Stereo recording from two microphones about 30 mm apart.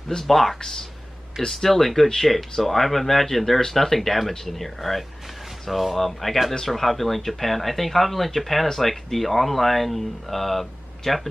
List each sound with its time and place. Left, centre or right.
0.3 s speech: centre